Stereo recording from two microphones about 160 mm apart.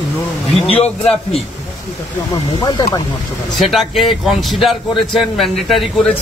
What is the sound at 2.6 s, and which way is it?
Speech, 20° left (ahead or behind).